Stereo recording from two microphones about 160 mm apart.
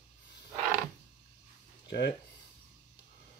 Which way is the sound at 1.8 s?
90° left.